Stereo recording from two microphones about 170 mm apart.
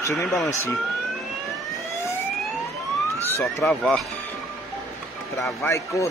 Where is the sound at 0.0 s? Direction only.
20° left (ahead or behind).